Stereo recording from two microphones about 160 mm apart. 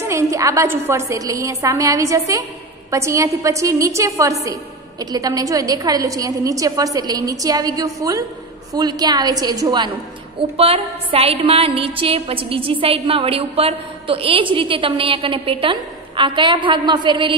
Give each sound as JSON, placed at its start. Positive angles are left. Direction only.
{"t": 0.0, "sound": "a woman's voice", "side_deg": -20}
{"t": 10.6, "sound": "a woman's voice", "side_deg": -35}